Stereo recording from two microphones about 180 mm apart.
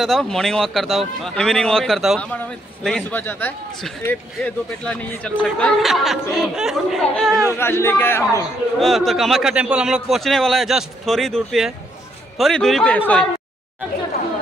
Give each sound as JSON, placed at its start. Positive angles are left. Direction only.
{"t": 0.0, "sound": "a man's voice", "side_deg": 0}
{"t": 7.5, "sound": "a man's voice", "side_deg": 15}
{"t": 8.7, "sound": "a man's voice", "side_deg": 0}